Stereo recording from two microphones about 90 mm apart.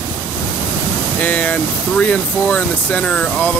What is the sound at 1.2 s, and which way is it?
Speech, 15° left (ahead or behind).